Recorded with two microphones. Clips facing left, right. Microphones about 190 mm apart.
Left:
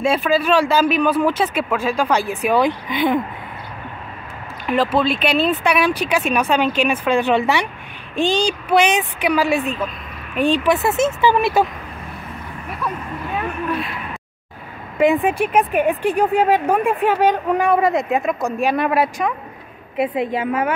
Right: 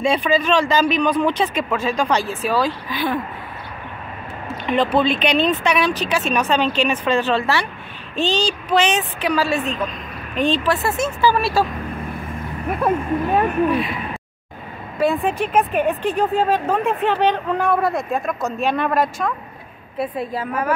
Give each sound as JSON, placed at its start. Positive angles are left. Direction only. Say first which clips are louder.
{"t": 0.0, "sound": "speech", "louder": "left 1 dB", "side_deg": 5}
{"t": 4.6, "sound": "speech", "louder": "even", "side_deg": 0}
{"t": 12.6, "sound": "speech", "louder": "right 8 dB", "side_deg": -50}
{"t": 13.7, "sound": "speech", "louder": "right 4 dB", "side_deg": 0}
{"t": 15.0, "sound": "speech", "louder": "left 3 dB", "side_deg": 15}